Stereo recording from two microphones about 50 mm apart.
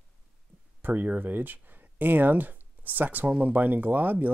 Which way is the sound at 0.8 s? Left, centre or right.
Right.